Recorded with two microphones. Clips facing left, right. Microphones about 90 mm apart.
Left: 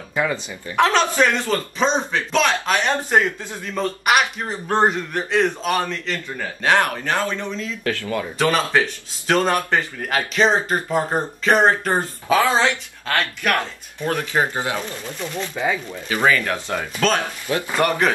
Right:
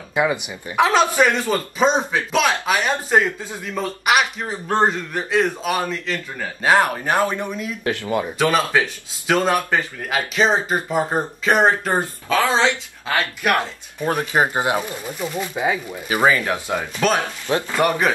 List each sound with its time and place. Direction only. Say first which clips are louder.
0.1 s speech: right 3 dB; 15° right (ahead or behind)
8.4 s speech: left 1 dB; 5° right (ahead or behind)
12.3 s speech: left 2 dB; 15° left (ahead or behind)
13.0 s speech: right 1 dB; 15° right (ahead or behind)